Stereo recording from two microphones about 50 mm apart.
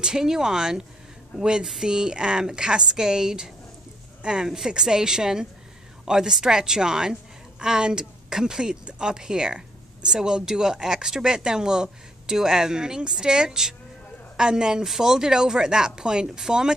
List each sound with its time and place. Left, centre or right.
0.0 s a woman's voice: centre